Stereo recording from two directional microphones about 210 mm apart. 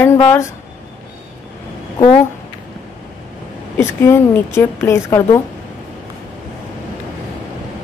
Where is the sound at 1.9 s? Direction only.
25° left (ahead or behind).